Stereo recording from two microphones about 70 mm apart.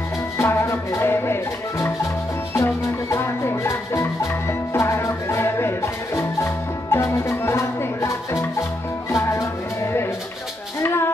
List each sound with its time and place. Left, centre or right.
0.4 s music: left